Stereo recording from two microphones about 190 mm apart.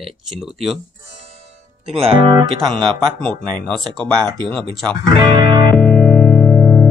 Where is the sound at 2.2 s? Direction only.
20° right (ahead or behind).